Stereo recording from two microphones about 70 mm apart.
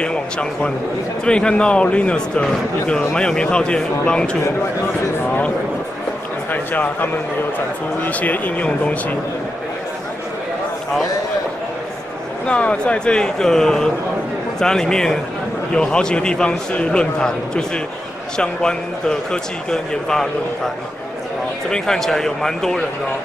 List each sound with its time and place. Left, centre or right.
0.0 s a man's voice: centre
6.5 s a man's voice: left
12.4 s a man's voice: centre